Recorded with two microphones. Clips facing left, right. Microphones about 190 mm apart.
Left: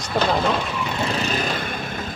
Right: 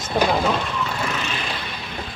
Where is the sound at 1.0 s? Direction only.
35° left (ahead or behind).